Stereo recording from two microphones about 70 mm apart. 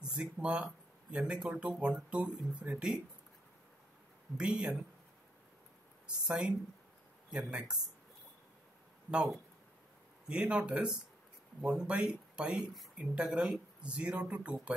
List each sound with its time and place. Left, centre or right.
0.0 s speech: centre
4.4 s speech: centre
6.0 s speech: centre
10.2 s speech: centre